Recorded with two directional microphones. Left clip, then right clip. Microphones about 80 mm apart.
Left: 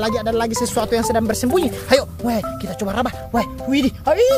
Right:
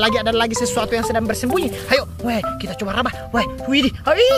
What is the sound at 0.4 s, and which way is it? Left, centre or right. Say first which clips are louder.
Speech: right 2 dB; left.